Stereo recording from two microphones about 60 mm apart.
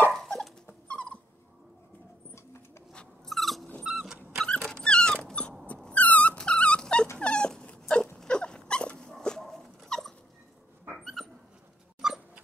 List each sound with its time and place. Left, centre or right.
0.8 s dog: left
3.3 s dog: centre
4.6 s dog: centre
5.9 s dog: left; by 10.1 s centre
11.2 s dog: centre
12.0 s a sound: centre